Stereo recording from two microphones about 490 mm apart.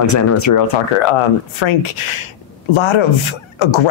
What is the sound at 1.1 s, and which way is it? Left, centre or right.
Speech, left.